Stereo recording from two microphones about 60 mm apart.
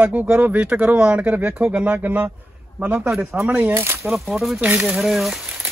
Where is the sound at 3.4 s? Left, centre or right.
Right.